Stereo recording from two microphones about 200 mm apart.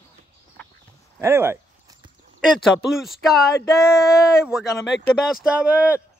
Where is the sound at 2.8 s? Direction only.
Centre (ahead or behind).